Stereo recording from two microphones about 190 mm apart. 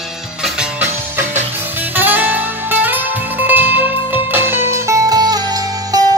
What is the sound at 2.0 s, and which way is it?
Music, 10° right (ahead or behind).